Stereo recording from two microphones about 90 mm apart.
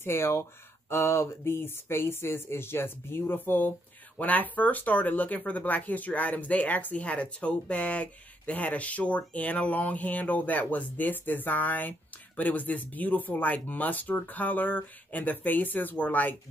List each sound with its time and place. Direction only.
0.0 s speech: 30° left (ahead or behind)